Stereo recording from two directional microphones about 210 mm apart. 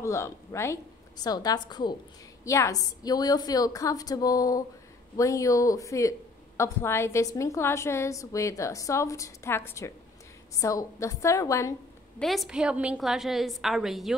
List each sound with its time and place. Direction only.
0.0 s a woman's voice: 15° left (ahead or behind)
12.2 s a woman's voice: centre (ahead or behind)